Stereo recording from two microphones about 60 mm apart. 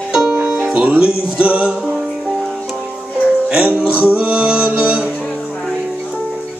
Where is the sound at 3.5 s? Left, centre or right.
Right.